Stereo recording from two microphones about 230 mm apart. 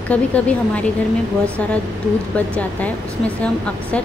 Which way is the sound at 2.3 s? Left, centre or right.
Centre.